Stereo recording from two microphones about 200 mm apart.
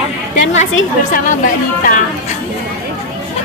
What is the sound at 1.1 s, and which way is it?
Speech, 40° left (ahead or behind).